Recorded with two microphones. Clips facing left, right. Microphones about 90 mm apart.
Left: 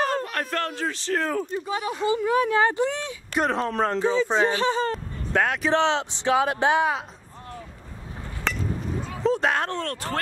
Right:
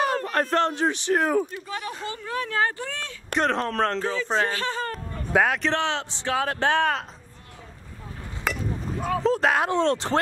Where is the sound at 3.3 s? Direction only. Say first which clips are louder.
Even; 5° left (ahead or behind).